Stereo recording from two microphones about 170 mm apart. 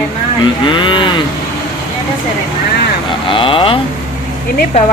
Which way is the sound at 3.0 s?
30° left (ahead or behind).